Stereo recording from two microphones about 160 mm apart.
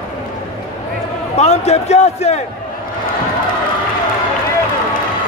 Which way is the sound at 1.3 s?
45° left (ahead or behind).